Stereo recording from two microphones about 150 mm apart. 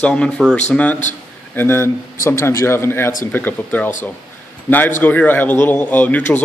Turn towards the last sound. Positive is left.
turn(degrees=10)  # may be behind; listen again after turning